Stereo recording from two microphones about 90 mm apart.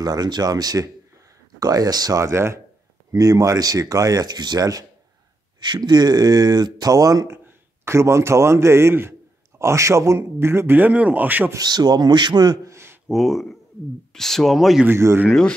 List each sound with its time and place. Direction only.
0.0 s a man's voice: 50° right (ahead or behind); by 11.5 s 20° right (ahead or behind)
11.5 s speech: 50° right (ahead or behind)
12.6 s a sound: 30° right (ahead or behind)
13.1 s speech: centre (ahead or behind)
14.9 s a man's voice: 25° right (ahead or behind)